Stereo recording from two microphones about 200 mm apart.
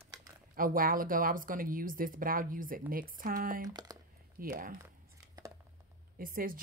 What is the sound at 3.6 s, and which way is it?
Speech, 20° right (ahead or behind).